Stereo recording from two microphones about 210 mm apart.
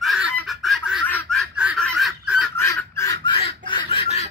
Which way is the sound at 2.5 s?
10° left (ahead or behind).